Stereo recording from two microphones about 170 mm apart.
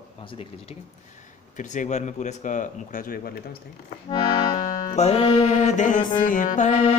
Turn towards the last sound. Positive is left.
turn(degrees=45)  # may be behind; listen again after turning